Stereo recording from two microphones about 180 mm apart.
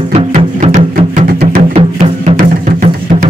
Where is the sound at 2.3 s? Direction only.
50° right (ahead or behind).